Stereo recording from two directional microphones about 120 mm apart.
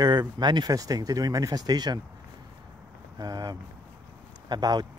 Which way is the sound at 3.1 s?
30° right (ahead or behind).